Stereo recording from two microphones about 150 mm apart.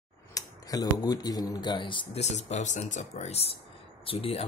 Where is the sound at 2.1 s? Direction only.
50° left (ahead or behind).